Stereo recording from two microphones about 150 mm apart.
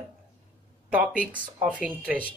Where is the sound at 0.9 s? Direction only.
10° right (ahead or behind).